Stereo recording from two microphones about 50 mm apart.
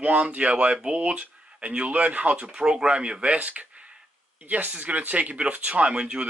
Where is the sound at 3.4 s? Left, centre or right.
Right.